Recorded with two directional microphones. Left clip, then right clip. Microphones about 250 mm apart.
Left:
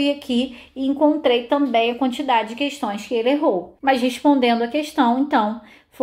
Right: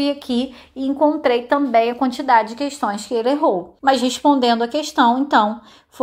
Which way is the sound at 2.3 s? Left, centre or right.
Right.